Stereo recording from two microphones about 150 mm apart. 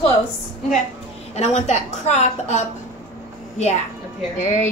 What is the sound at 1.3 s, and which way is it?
A woman's voice, 50° left (ahead or behind).